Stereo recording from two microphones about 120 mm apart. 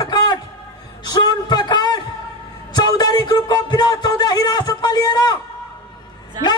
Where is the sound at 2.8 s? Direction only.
35° left (ahead or behind).